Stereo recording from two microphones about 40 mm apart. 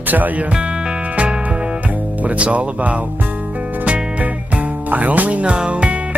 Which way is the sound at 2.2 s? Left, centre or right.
Right.